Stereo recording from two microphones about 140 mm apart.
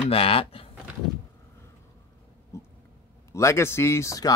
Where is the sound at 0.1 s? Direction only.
45° left (ahead or behind).